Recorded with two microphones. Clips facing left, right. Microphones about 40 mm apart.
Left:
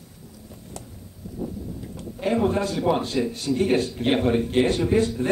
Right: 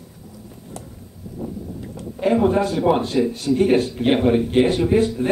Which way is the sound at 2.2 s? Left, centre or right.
Centre.